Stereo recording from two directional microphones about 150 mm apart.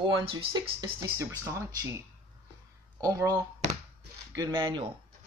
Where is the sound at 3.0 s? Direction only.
15° right (ahead or behind).